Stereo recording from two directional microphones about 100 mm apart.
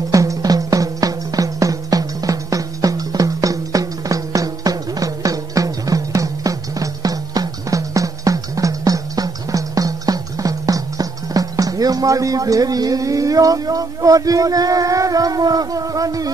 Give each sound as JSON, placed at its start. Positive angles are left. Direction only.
{"t": 0.1, "sound": "music", "side_deg": -35}